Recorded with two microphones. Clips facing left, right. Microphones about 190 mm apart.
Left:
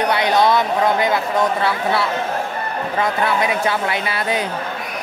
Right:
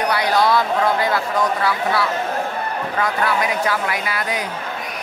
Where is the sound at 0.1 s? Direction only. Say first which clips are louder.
Left 1 dB; 20° left (ahead or behind).